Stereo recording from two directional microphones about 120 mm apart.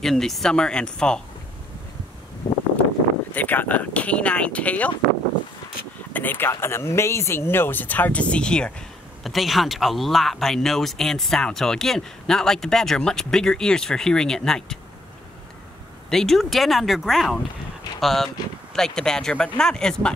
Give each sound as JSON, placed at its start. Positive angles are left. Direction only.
{"t": 0.0, "sound": "speech", "side_deg": 5}
{"t": 2.4, "sound": "a sound", "side_deg": 35}
{"t": 3.3, "sound": "speech", "side_deg": 15}
{"t": 6.1, "sound": "speech", "side_deg": 15}
{"t": 16.1, "sound": "speech", "side_deg": 5}